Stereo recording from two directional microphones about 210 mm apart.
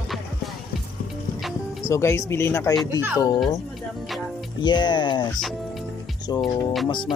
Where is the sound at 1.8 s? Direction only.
15° left (ahead or behind).